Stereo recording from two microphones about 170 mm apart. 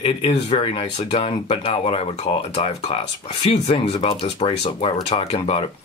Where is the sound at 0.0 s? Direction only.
35° left (ahead or behind).